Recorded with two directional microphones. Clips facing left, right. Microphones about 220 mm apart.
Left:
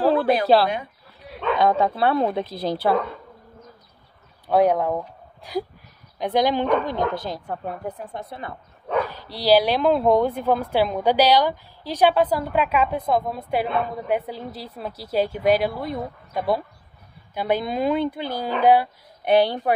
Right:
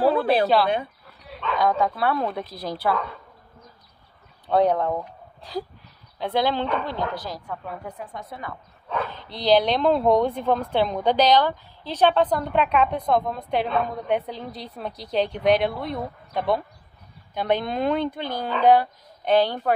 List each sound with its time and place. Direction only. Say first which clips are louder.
1.6 s a woman's voice: left 2 dB; 25° left (ahead or behind)
4.5 s a woman's voice: left 2 dB; 10° left (ahead or behind)
7.4 s a woman's voice: left 4 dB; 40° left (ahead or behind)
8.9 s a woman's voice: left 5 dB; 10° left (ahead or behind)